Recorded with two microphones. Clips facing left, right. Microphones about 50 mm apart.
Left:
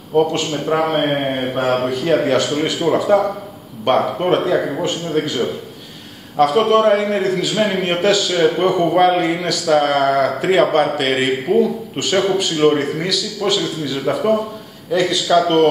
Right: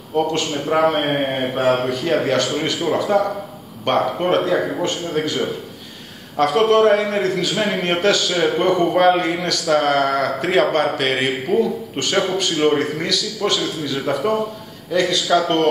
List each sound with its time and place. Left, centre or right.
0.1 s a man's voice: centre
0.5 s a man's voice: centre